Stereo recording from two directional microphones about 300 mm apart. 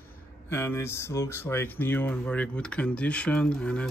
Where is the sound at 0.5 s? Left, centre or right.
Centre.